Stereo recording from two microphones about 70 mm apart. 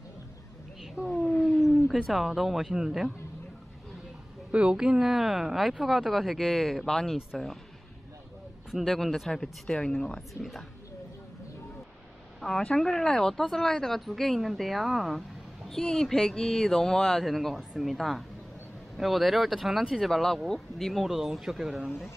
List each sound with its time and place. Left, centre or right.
1.0 s speech: centre
2.0 s speech: centre
4.5 s speech: centre
8.7 s speech: centre
12.4 s speech: centre